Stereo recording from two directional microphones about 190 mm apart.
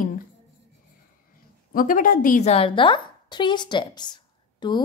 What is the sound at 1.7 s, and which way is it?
A woman's voice, 45° left (ahead or behind).